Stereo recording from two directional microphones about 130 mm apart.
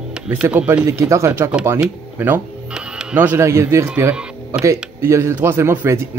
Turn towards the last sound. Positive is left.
turn(degrees=-20)  # may be behind; listen again after turning